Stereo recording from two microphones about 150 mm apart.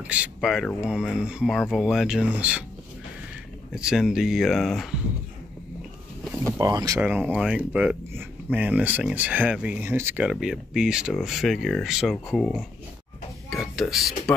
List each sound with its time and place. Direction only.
0.0 s speech: 10° right (ahead or behind)
3.7 s speech: 5° right (ahead or behind)
6.6 s speech: 25° right (ahead or behind)
7.0 s speech: 10° right (ahead or behind)
13.5 s whispering: centre (ahead or behind)